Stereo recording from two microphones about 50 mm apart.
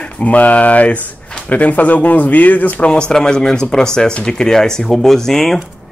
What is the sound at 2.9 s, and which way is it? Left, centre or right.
Speech, centre.